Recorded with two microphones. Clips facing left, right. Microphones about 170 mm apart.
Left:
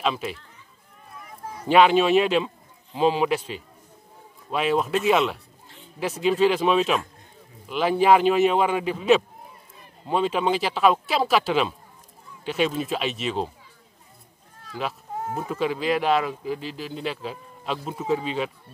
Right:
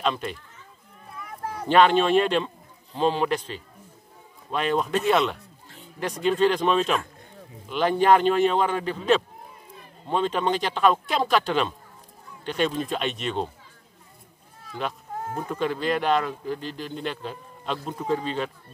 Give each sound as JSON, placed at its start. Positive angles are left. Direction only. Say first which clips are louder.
{"t": 0.0, "sound": "speech", "louder": "even", "side_deg": 5}
{"t": 1.4, "sound": "a sound", "louder": "right 5 dB", "side_deg": -65}
{"t": 1.7, "sound": "a man's voice", "louder": "left 1 dB", "side_deg": 10}
{"t": 14.7, "sound": "speech", "louder": "left 1 dB", "side_deg": 5}